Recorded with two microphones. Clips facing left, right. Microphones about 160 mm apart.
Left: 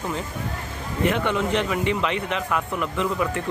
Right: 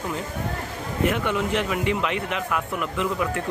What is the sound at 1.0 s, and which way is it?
Speech, 5° right (ahead or behind).